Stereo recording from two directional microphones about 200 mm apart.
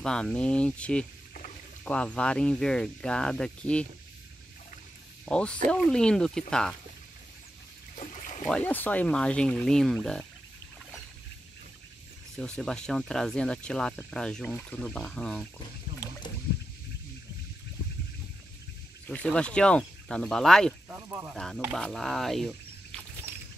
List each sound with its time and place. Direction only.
0.0 s speech: 5° left (ahead or behind)
5.2 s speech: 5° left (ahead or behind)
8.1 s a sound: 40° left (ahead or behind)
8.5 s speech: 5° left (ahead or behind)
12.4 s speech: 5° left (ahead or behind)
19.0 s speech: 5° left (ahead or behind)
20.9 s speech: 10° right (ahead or behind)
21.7 s speech: 5° left (ahead or behind)